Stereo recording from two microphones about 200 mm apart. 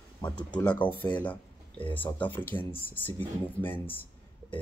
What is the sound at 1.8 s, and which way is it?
Speech, 10° left (ahead or behind).